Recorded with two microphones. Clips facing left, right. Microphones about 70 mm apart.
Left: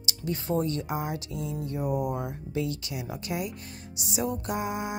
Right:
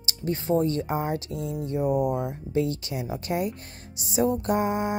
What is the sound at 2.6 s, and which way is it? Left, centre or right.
Music, right.